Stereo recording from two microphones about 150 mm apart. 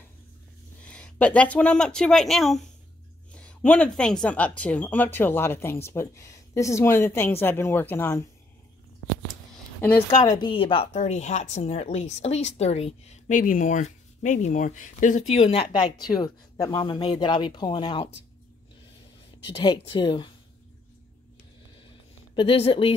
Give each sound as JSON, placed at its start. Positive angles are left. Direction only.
{"t": 0.8, "sound": "speech", "side_deg": 10}
{"t": 10.2, "sound": "speech", "side_deg": 25}
{"t": 10.5, "sound": "a woman's voice", "side_deg": 35}
{"t": 15.8, "sound": "speech", "side_deg": 30}
{"t": 19.4, "sound": "speech", "side_deg": 30}
{"t": 22.3, "sound": "speech", "side_deg": 35}